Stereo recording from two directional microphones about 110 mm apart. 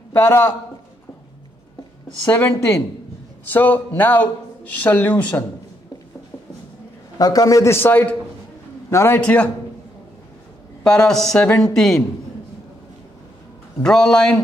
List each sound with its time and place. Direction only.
0.1 s a man's voice: 20° left (ahead or behind)
2.3 s speech: 15° left (ahead or behind)
7.2 s a man's voice: 35° left (ahead or behind)
9.2 s speech: 10° left (ahead or behind)
10.8 s speech: 5° left (ahead or behind)
13.8 s speech: 5° left (ahead or behind)